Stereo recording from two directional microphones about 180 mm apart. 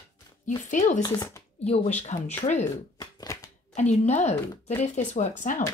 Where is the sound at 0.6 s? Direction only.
45° left (ahead or behind).